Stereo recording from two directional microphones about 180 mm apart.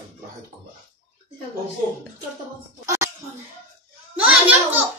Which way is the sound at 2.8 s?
15° right (ahead or behind).